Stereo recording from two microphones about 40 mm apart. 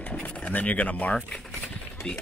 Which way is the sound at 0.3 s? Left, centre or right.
Left.